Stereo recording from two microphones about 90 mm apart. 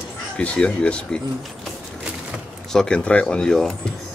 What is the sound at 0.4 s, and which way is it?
Speech, 10° left (ahead or behind).